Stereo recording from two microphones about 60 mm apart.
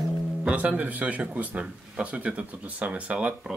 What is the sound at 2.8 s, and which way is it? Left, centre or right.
Speech, right.